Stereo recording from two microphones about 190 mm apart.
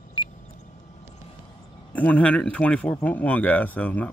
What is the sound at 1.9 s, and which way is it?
A man's voice, 10° left (ahead or behind).